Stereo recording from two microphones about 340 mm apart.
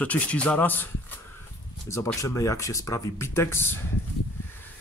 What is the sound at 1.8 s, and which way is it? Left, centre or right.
Speech, centre.